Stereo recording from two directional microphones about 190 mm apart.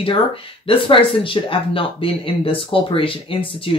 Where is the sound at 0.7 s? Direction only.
30° left (ahead or behind).